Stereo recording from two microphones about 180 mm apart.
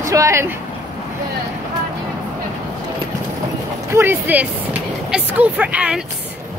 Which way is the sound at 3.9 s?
15° right (ahead or behind).